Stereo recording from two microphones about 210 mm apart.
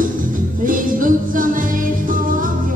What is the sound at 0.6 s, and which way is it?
Music, 40° right (ahead or behind).